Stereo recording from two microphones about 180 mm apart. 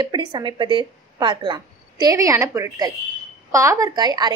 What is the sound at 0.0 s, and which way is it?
Speech, 25° right (ahead or behind).